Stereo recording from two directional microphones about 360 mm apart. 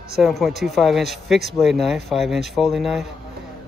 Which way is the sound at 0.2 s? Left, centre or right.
Centre.